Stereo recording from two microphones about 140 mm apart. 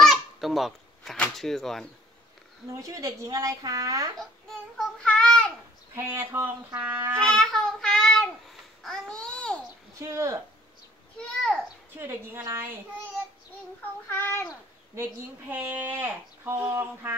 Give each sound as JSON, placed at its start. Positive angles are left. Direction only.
{"t": 0.0, "sound": "speech", "side_deg": 0}
{"t": 2.7, "sound": "a woman's voice", "side_deg": -25}
{"t": 4.5, "sound": "child singing", "side_deg": 5}
{"t": 5.9, "sound": "speech", "side_deg": -15}
{"t": 7.2, "sound": "child singing", "side_deg": 5}
{"t": 8.8, "sound": "babbling", "side_deg": 5}
{"t": 9.9, "sound": "a woman's voice", "side_deg": -20}
{"t": 12.0, "sound": "speech", "side_deg": -20}
{"t": 14.0, "sound": "speech", "side_deg": 15}
{"t": 15.5, "sound": "speech", "side_deg": -10}